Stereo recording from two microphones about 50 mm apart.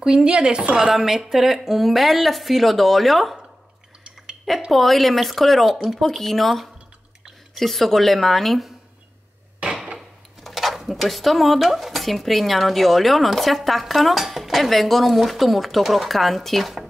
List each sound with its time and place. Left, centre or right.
0.0 s a woman's voice: centre
0.7 s speech: centre
4.6 s speech: centre
9.7 s wood: centre
10.4 s speech: centre